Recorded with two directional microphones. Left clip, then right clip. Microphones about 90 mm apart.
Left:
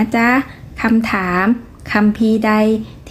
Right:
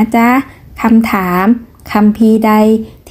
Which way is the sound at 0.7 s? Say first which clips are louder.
Right 5 dB; 35° right (ahead or behind).